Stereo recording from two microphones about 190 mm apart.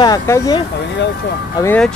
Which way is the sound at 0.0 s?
20° left (ahead or behind).